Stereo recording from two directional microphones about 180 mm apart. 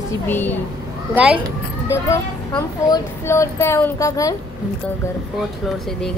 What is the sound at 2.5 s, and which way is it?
Speech, 20° left (ahead or behind).